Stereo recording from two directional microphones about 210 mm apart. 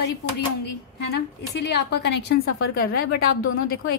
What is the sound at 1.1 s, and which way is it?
A woman's voice, 55° left (ahead or behind).